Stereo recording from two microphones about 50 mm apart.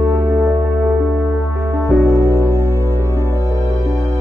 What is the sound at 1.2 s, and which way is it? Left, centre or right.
Music, right.